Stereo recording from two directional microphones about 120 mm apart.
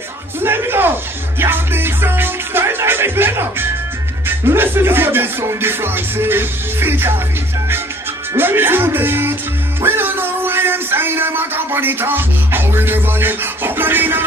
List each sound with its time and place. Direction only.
0.4 s a sound: 20° right (ahead or behind)
1.4 s music: 20° right (ahead or behind)
8.4 s speech: 20° right (ahead or behind)